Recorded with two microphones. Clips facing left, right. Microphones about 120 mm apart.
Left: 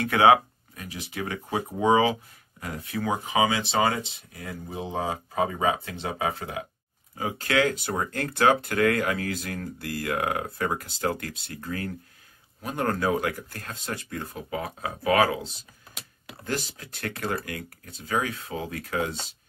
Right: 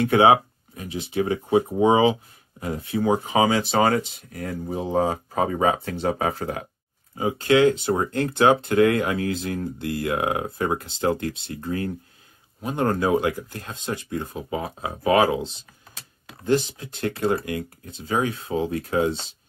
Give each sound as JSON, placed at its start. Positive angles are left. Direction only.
{"t": 0.0, "sound": "speech", "side_deg": -25}
{"t": 7.2, "sound": "speech", "side_deg": -25}